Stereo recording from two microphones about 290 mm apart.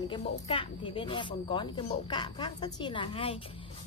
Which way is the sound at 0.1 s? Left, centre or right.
Centre.